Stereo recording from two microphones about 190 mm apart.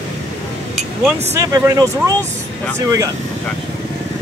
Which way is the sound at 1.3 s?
15° right (ahead or behind).